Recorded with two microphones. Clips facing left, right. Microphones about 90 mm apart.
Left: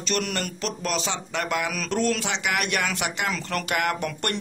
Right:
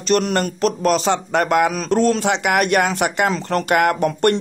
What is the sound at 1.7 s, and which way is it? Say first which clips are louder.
Speech: right 8 dB; 35° right (ahead or behind).